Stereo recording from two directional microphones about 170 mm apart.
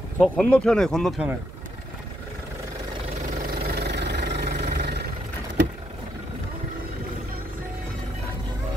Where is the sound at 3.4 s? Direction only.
65° right (ahead or behind).